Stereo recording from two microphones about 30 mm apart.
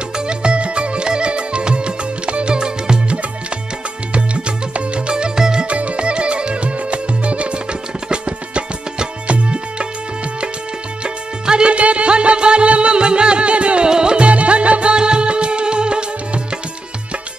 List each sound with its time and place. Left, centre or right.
0.3 s music: right
4.1 s music: right
5.1 s music: right
5.7 s music: right
11.4 s music: right
11.7 s music: right
13.8 s music: right